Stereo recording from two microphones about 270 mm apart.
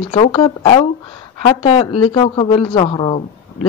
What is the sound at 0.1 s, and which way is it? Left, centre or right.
Speech, centre.